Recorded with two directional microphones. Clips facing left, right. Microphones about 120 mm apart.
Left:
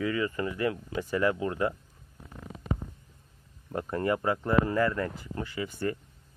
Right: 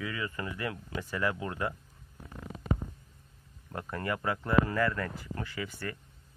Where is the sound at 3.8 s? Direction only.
25° left (ahead or behind).